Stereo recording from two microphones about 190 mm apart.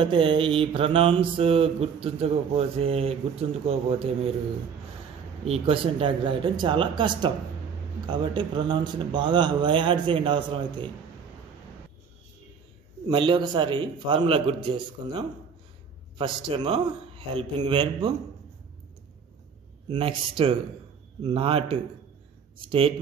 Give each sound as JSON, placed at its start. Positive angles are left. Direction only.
{"t": 0.0, "sound": "mantra", "side_deg": -25}
{"t": 3.6, "sound": "speech", "side_deg": -30}
{"t": 5.4, "sound": "mantra", "side_deg": -30}
{"t": 13.1, "sound": "mantra", "side_deg": -25}
{"t": 19.9, "sound": "mantra", "side_deg": -25}